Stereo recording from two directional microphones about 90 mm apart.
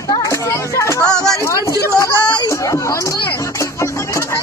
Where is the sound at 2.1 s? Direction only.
55° left (ahead or behind).